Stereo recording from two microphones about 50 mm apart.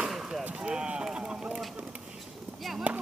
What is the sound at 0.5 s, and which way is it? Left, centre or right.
Rowboat, centre.